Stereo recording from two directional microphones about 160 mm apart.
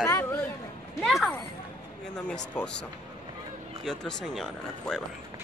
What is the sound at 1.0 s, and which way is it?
Speech, centre (ahead or behind).